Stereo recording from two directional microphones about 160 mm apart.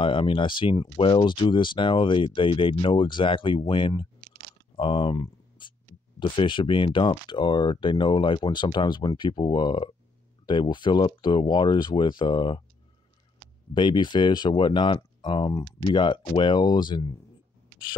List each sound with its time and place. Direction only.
0.0 s speech: 35° left (ahead or behind)
5.1 s a sound: 20° left (ahead or behind)
6.1 s speech: 30° left (ahead or behind)
13.7 s speech: 30° left (ahead or behind)